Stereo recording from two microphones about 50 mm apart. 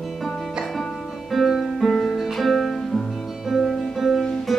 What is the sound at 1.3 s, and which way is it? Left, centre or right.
Music, centre.